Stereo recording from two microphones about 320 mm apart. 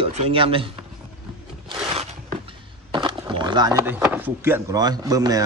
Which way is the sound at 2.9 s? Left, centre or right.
Centre.